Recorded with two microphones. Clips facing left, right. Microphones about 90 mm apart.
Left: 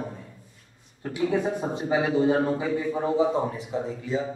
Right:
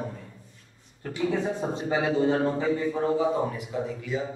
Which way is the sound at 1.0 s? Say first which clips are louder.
Left 2 dB; 15° left (ahead or behind).